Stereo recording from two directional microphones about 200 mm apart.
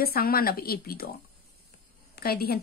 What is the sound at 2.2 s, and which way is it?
Speech, 50° left (ahead or behind).